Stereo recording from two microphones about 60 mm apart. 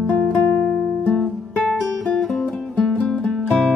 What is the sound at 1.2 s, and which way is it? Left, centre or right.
Music, centre.